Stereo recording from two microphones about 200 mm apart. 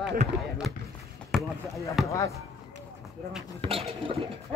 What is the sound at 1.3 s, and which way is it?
Basketball bounce, centre (ahead or behind).